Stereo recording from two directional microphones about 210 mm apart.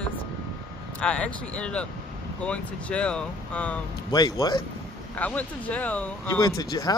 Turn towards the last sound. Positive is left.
turn(degrees=20)  # may be behind; listen again after turning